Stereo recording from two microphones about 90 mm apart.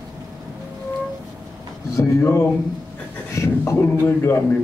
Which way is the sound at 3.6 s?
25° left (ahead or behind).